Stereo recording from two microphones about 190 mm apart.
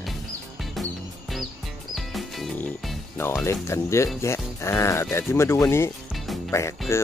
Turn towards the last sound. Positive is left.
turn(degrees=15)  # may be behind; listen again after turning